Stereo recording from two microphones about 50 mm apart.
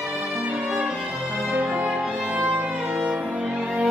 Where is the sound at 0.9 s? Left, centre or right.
Right.